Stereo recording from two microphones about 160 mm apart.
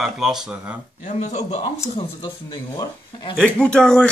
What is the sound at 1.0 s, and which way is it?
Speech, 45° left (ahead or behind).